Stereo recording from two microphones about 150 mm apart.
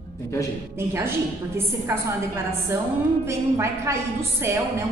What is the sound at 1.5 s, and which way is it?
Speech, 15° right (ahead or behind).